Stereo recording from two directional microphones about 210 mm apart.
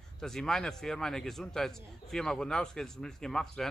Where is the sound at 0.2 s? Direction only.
Centre (ahead or behind).